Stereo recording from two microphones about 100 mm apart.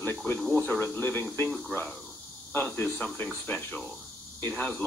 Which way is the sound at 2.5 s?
20° left (ahead or behind).